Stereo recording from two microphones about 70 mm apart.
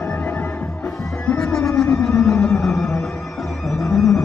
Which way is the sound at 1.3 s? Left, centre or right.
Centre.